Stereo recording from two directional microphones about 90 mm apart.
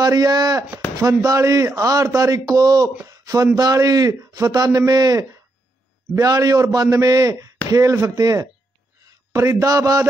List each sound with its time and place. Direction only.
0.0 s a man's voice: 45° right (ahead or behind)
3.1 s a sound: 45° right (ahead or behind)
3.5 s a man's voice: 45° right (ahead or behind)